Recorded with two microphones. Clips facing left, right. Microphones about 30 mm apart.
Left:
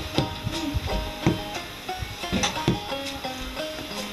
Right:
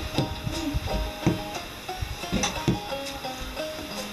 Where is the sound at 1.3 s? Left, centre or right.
Centre.